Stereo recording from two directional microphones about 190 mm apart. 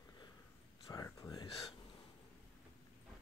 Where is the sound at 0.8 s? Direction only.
20° left (ahead or behind).